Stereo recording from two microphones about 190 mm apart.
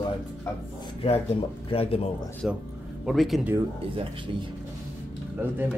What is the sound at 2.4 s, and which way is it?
Speech, 5° right (ahead or behind).